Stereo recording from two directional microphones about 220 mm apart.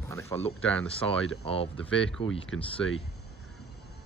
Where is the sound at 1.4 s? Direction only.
25° left (ahead or behind).